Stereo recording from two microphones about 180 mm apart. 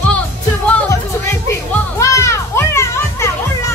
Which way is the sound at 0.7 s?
5° left (ahead or behind).